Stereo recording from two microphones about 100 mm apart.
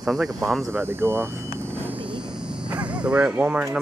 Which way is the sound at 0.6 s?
25° right (ahead or behind).